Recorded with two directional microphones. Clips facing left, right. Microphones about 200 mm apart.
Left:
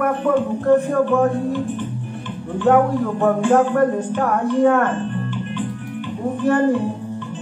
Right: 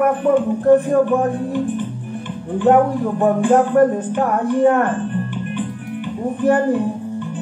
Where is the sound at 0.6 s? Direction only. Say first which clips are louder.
Right 3 dB; 15° right (ahead or behind).